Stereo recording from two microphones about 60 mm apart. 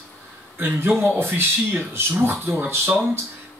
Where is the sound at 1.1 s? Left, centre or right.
Right.